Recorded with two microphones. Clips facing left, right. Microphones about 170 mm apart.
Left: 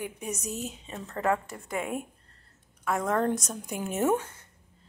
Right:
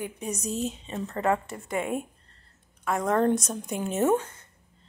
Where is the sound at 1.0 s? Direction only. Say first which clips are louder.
Right 2 dB; 5° right (ahead or behind).